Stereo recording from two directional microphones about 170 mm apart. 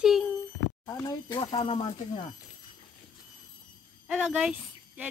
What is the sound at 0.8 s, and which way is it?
Speech, 20° left (ahead or behind).